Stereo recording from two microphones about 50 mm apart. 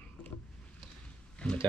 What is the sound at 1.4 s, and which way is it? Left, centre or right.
Speech, left.